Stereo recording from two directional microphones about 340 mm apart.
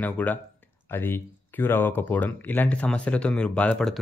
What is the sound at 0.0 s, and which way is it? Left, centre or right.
Speech, centre.